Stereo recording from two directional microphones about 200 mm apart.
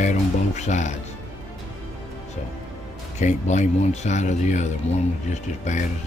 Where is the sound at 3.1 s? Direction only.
35° left (ahead or behind).